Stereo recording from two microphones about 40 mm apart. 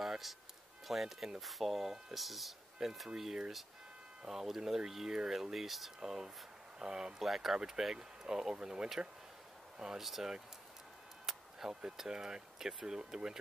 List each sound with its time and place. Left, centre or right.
0.0 s music: centre
0.8 s speech: centre
4.3 s speech: centre
5.9 s speech: centre
7.2 s speech: centre
11.3 s a sound: centre
11.7 s speech: centre